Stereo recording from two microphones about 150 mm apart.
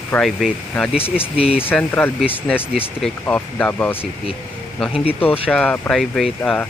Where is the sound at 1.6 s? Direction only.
10° left (ahead or behind).